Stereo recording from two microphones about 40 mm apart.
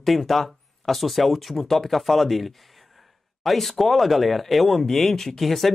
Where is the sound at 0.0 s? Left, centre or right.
Centre.